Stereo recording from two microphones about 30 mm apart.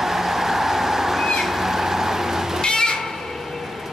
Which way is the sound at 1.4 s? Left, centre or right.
Centre.